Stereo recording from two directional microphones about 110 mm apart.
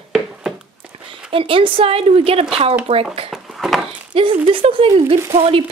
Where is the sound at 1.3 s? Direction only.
55° right (ahead or behind).